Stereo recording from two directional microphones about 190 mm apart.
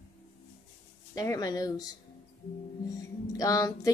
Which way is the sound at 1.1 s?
20° left (ahead or behind).